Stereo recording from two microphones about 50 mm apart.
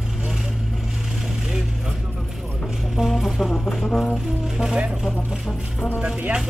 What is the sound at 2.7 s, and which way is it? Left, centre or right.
Music, centre.